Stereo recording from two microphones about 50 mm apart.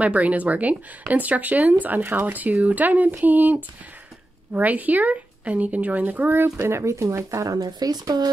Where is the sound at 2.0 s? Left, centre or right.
Right.